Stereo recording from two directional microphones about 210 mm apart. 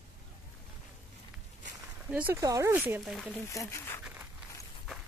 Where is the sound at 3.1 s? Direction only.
Centre (ahead or behind).